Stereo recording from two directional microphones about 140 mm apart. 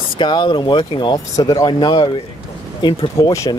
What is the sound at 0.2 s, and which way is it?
Speech, 35° left (ahead or behind).